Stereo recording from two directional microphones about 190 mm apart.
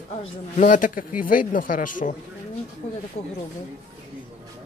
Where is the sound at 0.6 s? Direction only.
45° left (ahead or behind).